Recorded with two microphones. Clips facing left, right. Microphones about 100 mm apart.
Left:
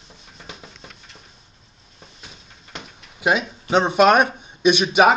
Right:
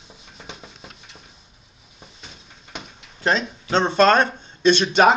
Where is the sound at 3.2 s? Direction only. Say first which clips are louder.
Left 1 dB; 10° left (ahead or behind).